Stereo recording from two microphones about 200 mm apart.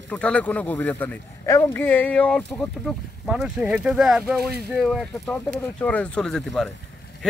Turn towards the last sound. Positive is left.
turn(degrees=5)  # may be behind; listen again after turning